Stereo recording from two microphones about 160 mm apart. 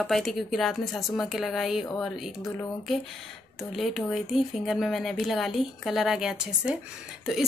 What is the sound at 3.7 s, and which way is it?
A woman's voice, centre (ahead or behind).